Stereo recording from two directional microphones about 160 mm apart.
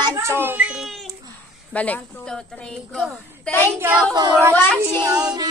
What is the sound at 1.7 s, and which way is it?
A woman's voice, 10° left (ahead or behind).